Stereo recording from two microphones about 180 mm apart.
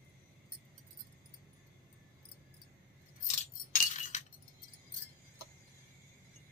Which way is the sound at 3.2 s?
45° left (ahead or behind).